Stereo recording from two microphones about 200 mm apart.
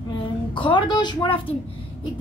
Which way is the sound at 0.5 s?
25° left (ahead or behind).